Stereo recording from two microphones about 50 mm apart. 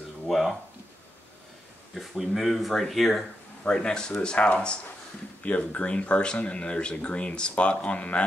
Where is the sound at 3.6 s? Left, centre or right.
Centre.